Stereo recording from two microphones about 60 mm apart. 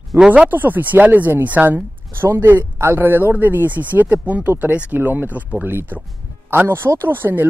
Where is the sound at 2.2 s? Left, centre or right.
Right.